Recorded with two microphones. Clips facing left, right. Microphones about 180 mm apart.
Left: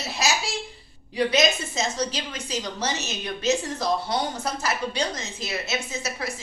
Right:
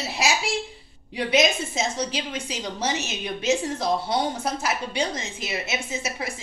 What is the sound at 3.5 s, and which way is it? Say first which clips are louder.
A woman's voice: right 1 dB; 25° right (ahead or behind).